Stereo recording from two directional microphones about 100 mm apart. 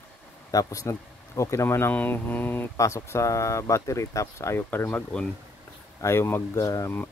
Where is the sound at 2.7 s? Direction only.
30° left (ahead or behind).